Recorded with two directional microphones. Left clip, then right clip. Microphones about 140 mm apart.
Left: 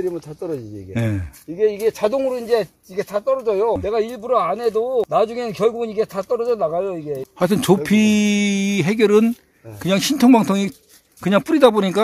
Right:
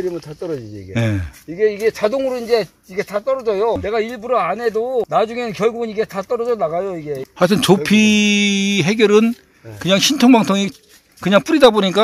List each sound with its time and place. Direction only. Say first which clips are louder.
0.0 s speech: right 1 dB; 25° left (ahead or behind)
0.9 s speech: right 4 dB; 5° left (ahead or behind)
1.6 s speech: right 2 dB; 25° left (ahead or behind)
3.4 s a man's voice: right 1 dB; 30° left (ahead or behind)